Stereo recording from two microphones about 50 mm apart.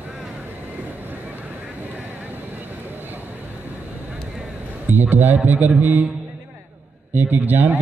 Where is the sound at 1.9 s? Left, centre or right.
Right.